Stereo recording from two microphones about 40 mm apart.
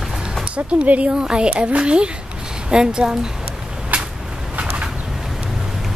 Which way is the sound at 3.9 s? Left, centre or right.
Right.